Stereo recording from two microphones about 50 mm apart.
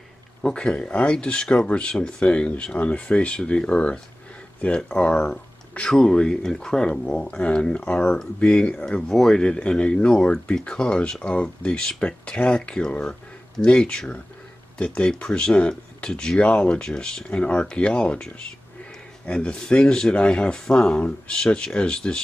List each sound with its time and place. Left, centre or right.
0.5 s speech: centre
9.1 s speech: centre